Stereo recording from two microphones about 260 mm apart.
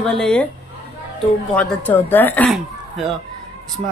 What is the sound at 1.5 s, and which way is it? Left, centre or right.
Speech, centre.